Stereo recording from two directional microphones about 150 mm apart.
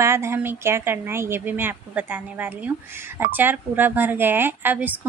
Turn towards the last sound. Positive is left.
turn(degrees=-15)  # may be behind; listen again after turning